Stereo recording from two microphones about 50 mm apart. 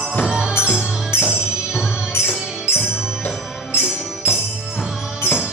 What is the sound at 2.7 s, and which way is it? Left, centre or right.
Music, right.